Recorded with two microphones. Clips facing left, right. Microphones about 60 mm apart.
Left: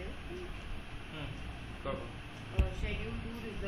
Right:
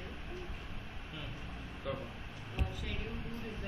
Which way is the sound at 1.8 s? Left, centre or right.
Centre.